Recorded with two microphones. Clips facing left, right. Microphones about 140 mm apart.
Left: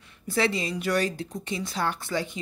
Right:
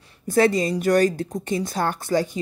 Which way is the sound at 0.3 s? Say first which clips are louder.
Right 8 dB; 45° right (ahead or behind).